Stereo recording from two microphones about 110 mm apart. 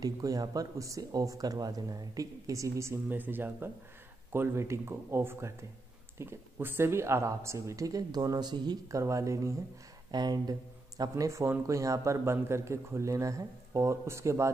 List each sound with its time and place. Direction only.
0.0 s speech: 35° right (ahead or behind)
10.1 s speech: 40° right (ahead or behind)